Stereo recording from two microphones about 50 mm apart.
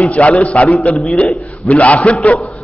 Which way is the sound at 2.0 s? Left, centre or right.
Centre.